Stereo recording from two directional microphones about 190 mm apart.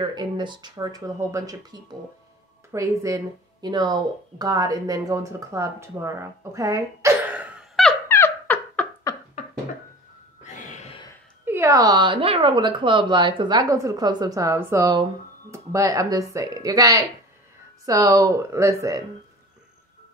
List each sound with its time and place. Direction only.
0.0 s speech: 25° right (ahead or behind); by 7.9 s centre (ahead or behind)
8.1 s dog: 10° left (ahead or behind)
10.4 s music: 35° left (ahead or behind)
11.4 s speech: 15° right (ahead or behind)